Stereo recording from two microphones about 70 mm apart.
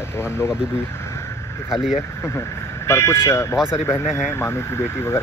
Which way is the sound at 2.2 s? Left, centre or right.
Left.